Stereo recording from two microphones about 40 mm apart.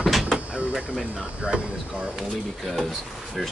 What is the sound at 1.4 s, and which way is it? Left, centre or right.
Speech, right.